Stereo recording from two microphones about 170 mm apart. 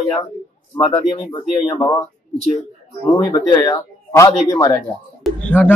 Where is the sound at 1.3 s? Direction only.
20° left (ahead or behind).